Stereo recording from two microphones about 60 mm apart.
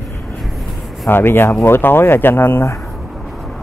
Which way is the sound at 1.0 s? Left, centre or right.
Left.